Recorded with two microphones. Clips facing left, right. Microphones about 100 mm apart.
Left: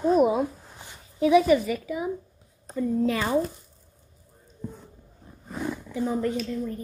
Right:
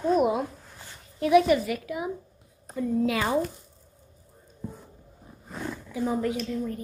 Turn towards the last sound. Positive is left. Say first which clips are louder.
# left 1 dB
turn(degrees=0)  # may be behind; listen again after turning